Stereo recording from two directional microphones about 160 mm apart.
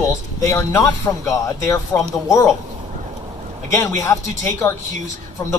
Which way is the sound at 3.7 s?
20° left (ahead or behind).